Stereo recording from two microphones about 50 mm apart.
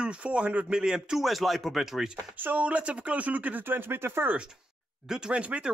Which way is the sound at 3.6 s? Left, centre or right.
Right.